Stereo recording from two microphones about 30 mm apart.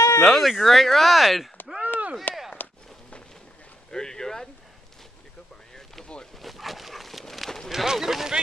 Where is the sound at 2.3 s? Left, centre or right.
Left.